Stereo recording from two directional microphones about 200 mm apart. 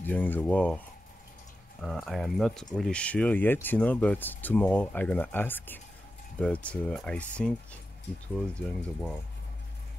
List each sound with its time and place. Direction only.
0.0 s speech: 10° left (ahead or behind)